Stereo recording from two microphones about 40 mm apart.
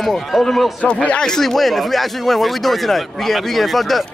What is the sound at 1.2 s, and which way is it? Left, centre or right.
Speech, centre.